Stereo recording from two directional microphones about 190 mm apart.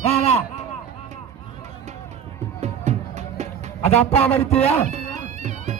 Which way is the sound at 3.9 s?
35° left (ahead or behind).